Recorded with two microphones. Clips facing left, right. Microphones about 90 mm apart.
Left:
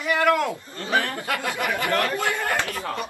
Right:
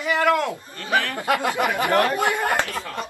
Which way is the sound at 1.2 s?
20° right (ahead or behind).